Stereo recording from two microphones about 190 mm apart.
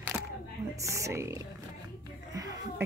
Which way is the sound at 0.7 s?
15° right (ahead or behind).